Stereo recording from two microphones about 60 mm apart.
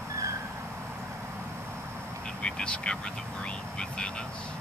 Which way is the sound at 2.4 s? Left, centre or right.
Centre.